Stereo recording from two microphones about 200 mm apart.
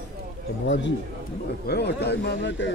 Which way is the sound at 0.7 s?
65° left (ahead or behind).